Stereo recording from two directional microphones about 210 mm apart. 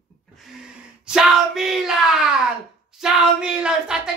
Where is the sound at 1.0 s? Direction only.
Centre (ahead or behind).